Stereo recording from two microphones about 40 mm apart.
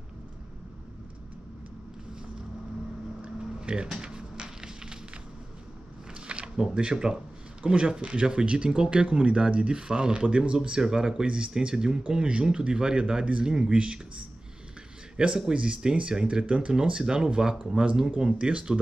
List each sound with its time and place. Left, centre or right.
3.6 s a sound: right
6.2 s speech: right
15.1 s speech: right
17.0 s speech: centre
18.1 s speech: right